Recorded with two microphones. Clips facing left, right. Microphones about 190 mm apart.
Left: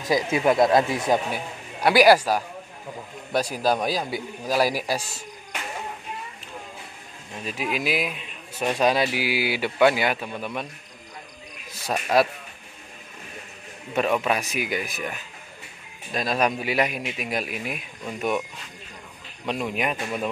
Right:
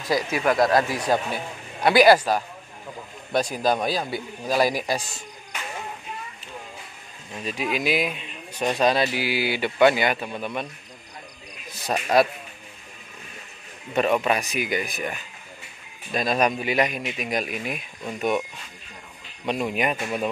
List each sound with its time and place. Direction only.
0.0 s speech: 20° left (ahead or behind)
7.4 s speech: 5° left (ahead or behind)
11.8 s speech: 5° left (ahead or behind)
13.9 s speech: centre (ahead or behind)
19.4 s speech: centre (ahead or behind)